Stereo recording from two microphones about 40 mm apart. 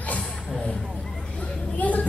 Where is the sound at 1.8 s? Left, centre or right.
Left.